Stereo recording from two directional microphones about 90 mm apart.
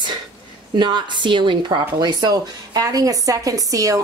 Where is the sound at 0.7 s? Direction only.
60° right (ahead or behind).